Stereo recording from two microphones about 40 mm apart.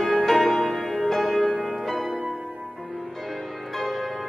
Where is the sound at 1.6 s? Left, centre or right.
Centre.